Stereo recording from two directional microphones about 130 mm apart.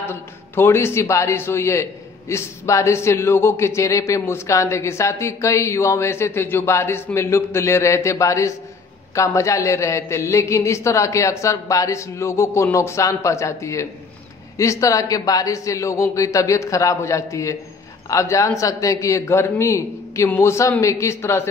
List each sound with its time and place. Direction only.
0.0 s a man's voice: 20° left (ahead or behind)